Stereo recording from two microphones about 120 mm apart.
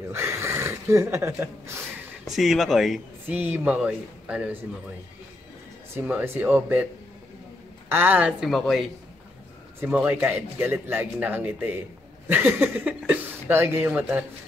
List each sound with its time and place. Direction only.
0.1 s speech: 20° right (ahead or behind)
2.2 s speech: centre (ahead or behind)
3.3 s a man's voice: 15° right (ahead or behind)
5.9 s a man's voice: 15° right (ahead or behind)
7.9 s a man's voice: 15° right (ahead or behind)
8.3 s speech: centre (ahead or behind)
9.8 s a man's voice: 15° right (ahead or behind)